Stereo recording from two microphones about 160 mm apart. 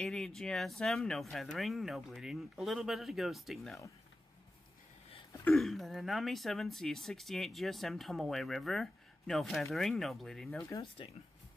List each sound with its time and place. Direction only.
0.0 s speech: centre (ahead or behind)
5.5 s speech: centre (ahead or behind)
11.0 s speech: 35° left (ahead or behind)